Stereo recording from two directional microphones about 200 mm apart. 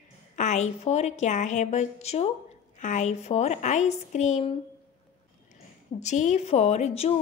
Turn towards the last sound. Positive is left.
turn(degrees=30)  # may be behind; listen again after turning